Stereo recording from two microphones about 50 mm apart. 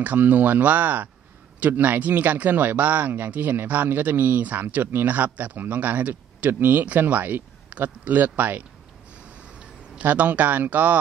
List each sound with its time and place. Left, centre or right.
0.0 s speech: right
10.0 s speech: right